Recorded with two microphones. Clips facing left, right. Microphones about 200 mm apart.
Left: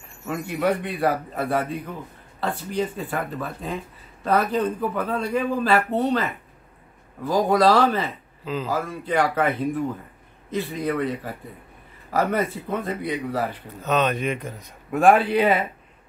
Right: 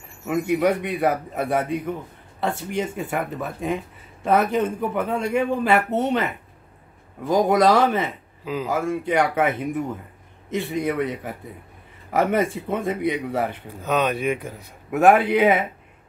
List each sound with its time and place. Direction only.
0.4 s a man's voice: 20° right (ahead or behind)
7.2 s a man's voice: 20° right (ahead or behind)
13.8 s a man's voice: 10° right (ahead or behind)